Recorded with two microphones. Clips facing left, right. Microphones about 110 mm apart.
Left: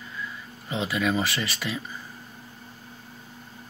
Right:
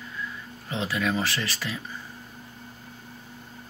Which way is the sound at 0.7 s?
5° left (ahead or behind).